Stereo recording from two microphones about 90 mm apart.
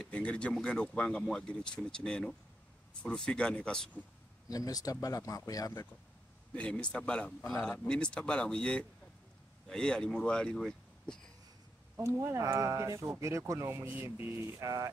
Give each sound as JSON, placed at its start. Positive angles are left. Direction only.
{"t": 0.0, "sound": "speech", "side_deg": 10}
{"t": 4.5, "sound": "speech", "side_deg": 45}
{"t": 6.5, "sound": "speech", "side_deg": 10}
{"t": 12.0, "sound": "speech", "side_deg": -30}